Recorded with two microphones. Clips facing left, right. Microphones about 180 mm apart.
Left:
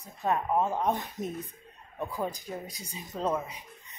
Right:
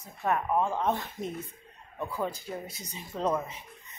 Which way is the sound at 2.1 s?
15° left (ahead or behind).